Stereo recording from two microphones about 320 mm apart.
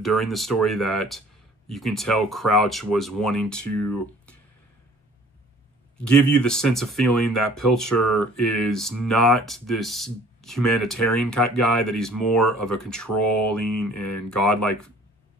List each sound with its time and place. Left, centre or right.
0.0 s speech: centre
5.9 s speech: centre
7.2 s speech: left
7.5 s speech: centre
13.9 s speech: left
14.3 s speech: centre